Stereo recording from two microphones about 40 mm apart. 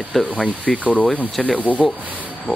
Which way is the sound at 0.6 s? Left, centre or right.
Left.